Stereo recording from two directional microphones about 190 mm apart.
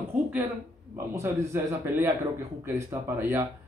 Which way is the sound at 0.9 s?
15° right (ahead or behind).